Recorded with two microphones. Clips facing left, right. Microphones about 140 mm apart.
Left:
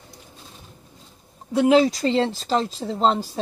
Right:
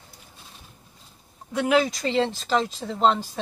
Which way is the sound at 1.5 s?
30° left (ahead or behind).